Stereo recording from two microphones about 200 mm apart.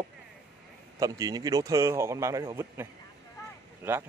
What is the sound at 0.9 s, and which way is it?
A man's voice, 15° right (ahead or behind).